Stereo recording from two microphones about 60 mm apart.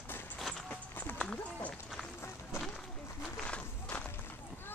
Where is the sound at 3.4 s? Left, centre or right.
Centre.